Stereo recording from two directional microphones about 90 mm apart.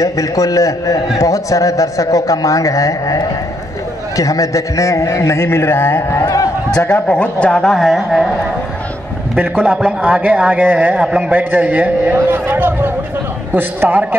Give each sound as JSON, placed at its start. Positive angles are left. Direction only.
{"t": 0.0, "sound": "a man's voice", "side_deg": 40}
{"t": 6.2, "sound": "a sound", "side_deg": 40}
{"t": 7.1, "sound": "a man's voice", "side_deg": 15}
{"t": 9.4, "sound": "a man's voice", "side_deg": -15}